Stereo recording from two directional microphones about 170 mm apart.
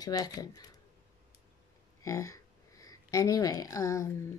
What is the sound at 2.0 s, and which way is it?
Speech, 20° left (ahead or behind).